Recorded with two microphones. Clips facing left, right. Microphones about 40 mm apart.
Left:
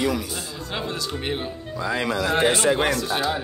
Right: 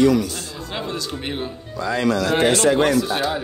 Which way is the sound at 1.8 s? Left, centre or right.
Centre.